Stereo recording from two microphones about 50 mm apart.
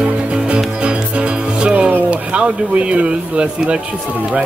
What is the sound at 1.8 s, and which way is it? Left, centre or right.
Speech, right.